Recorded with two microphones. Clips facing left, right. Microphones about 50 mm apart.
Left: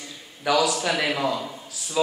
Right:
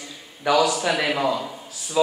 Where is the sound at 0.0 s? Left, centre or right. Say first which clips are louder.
Right 2 dB; centre.